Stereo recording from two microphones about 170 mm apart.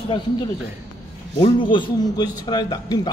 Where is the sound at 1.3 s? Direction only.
30° left (ahead or behind).